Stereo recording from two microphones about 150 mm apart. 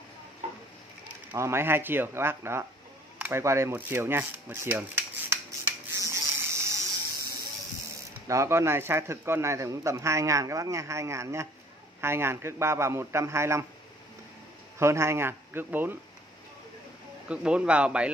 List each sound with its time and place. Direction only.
1.3 s a man's voice: 15° right (ahead or behind)
3.2 s rub: 15° right (ahead or behind)
5.9 s a sound: 20° right (ahead or behind)
8.3 s a man's voice: 20° right (ahead or behind)
14.8 s a man's voice: 20° right (ahead or behind)
17.3 s a man's voice: 5° right (ahead or behind)